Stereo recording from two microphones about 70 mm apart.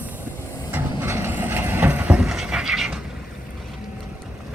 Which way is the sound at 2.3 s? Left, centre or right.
Centre.